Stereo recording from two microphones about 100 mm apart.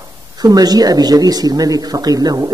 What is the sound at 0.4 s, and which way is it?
Speech, 40° right (ahead or behind).